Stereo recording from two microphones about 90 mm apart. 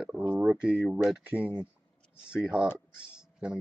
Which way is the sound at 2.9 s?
10° right (ahead or behind).